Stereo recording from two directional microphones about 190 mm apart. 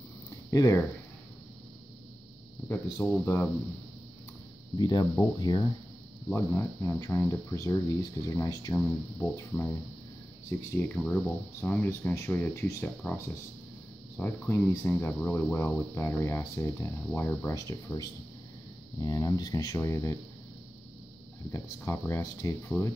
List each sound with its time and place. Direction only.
0.5 s speech: 15° left (ahead or behind)
2.7 s speech: 10° left (ahead or behind)
4.7 s speech: 20° left (ahead or behind)
10.8 s speech: 5° left (ahead or behind)
21.5 s speech: 15° left (ahead or behind)